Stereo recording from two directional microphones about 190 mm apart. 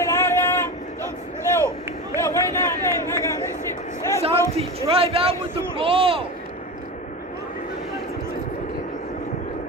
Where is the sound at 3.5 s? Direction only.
40° left (ahead or behind).